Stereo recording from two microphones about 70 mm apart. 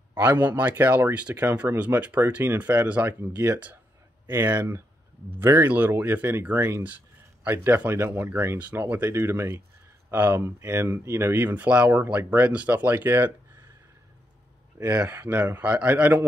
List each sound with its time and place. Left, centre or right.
0.3 s speech: right
5.3 s speech: right
11.4 s speech: right
14.9 s speech: right